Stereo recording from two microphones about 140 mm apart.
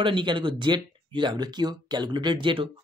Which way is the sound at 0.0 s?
35° right (ahead or behind).